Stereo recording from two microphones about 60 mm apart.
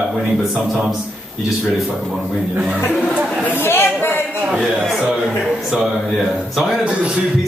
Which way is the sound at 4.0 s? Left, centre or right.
Left.